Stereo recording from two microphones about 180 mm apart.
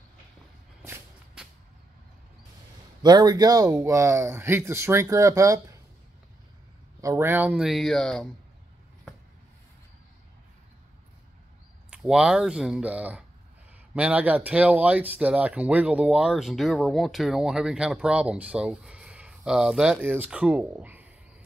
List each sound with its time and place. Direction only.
0.8 s shuffle: 5° right (ahead or behind)
3.0 s speech: 25° right (ahead or behind)
7.0 s speech: 15° right (ahead or behind); by 8.3 s 5° left (ahead or behind)
11.9 s speech: 5° right (ahead or behind)